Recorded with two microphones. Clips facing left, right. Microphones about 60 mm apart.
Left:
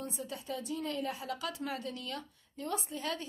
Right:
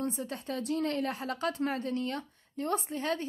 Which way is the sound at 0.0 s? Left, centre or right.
Right.